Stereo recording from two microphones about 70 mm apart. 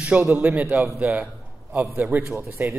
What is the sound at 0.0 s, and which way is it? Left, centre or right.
A man's voice, right.